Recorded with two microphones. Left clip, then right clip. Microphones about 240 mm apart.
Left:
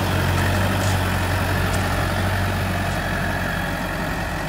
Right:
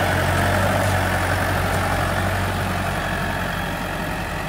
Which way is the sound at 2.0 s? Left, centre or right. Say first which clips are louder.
Right 1 dB; centre.